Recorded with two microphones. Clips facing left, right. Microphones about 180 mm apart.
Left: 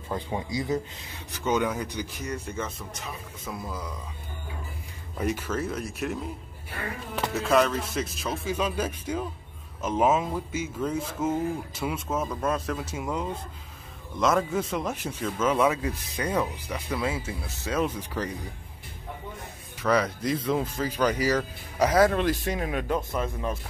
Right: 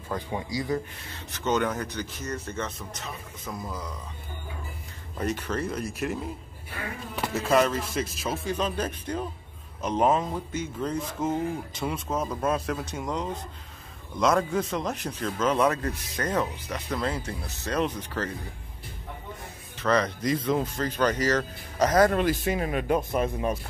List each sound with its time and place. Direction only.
0.1 s speech: 20° left (ahead or behind); by 3.9 s 5° left (ahead or behind)
5.1 s speech: 10° left (ahead or behind)
7.3 s speech: centre (ahead or behind)
12.3 s speech: 10° right (ahead or behind); by 18.3 s 10° left (ahead or behind)
19.8 s speech: 5° left (ahead or behind)
22.8 s speech: 15° right (ahead or behind)